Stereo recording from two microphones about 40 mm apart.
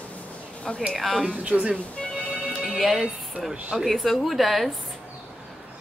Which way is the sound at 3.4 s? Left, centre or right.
Centre.